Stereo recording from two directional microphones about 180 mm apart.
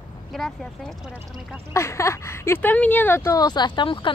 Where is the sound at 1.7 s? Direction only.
15° left (ahead or behind).